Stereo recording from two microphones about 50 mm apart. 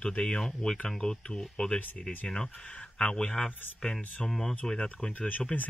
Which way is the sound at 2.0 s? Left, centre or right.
Centre.